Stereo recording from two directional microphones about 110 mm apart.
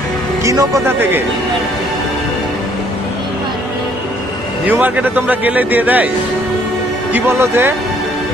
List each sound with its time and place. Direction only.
0.4 s speech: 30° right (ahead or behind)
4.6 s a man's voice: 15° right (ahead or behind)
7.2 s speech: 20° right (ahead or behind)